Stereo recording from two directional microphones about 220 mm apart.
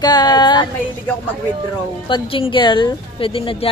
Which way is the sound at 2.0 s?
20° left (ahead or behind).